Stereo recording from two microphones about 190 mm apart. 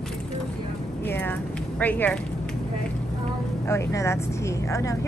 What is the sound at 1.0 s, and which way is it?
Speech, 10° left (ahead or behind).